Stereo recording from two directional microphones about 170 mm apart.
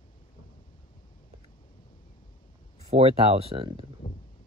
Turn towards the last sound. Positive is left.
turn(degrees=-30)  # may be behind; listen again after turning